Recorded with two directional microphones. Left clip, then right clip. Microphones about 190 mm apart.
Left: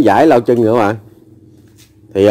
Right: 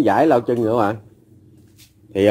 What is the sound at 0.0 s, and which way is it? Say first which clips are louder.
Speech: left 6 dB; 50° left (ahead or behind).